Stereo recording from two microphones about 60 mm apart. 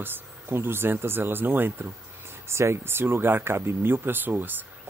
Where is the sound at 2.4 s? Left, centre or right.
Right.